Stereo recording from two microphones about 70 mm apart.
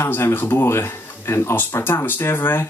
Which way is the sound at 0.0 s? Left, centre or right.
Left.